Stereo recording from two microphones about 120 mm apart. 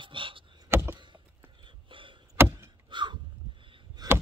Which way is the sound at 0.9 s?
40° right (ahead or behind).